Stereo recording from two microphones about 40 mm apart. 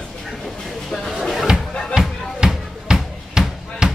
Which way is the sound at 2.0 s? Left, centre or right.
Centre.